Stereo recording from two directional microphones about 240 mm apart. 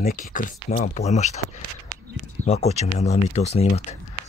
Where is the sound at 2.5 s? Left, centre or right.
Left.